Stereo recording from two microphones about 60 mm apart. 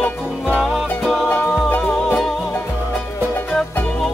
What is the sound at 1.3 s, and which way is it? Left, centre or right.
Music, left.